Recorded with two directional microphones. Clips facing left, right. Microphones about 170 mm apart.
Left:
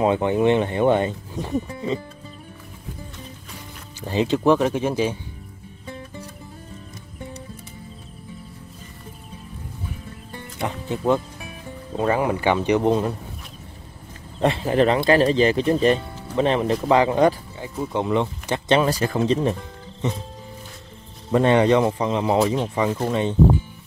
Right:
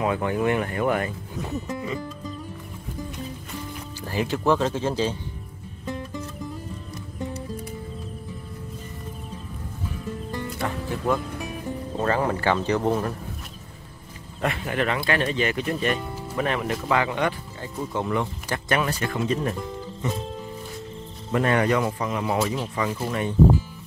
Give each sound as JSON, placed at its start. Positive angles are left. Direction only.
{"t": 0.0, "sound": "speech", "side_deg": 25}
{"t": 4.0, "sound": "speech", "side_deg": 20}
{"t": 10.6, "sound": "speech", "side_deg": 20}
{"t": 14.4, "sound": "speech", "side_deg": 30}
{"t": 17.6, "sound": "speech", "side_deg": 15}
{"t": 21.3, "sound": "speech", "side_deg": 25}